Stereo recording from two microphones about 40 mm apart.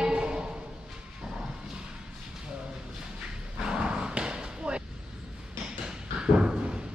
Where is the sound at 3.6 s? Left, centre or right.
Centre.